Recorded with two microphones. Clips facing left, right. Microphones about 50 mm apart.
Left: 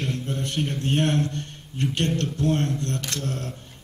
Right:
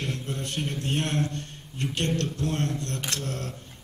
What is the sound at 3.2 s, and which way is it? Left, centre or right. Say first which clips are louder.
Speech: left 3 dB; left.